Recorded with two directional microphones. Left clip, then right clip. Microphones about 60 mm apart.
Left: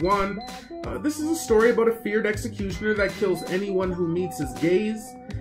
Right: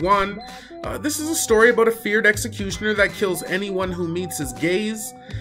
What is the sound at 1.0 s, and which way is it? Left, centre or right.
Speech, right.